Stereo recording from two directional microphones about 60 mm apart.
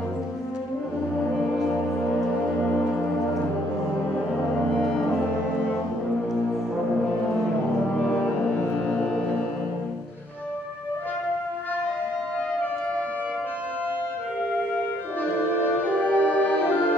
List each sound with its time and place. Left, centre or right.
15.6 s music: left